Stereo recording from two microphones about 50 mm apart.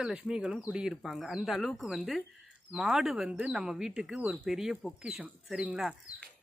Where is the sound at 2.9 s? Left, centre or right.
Centre.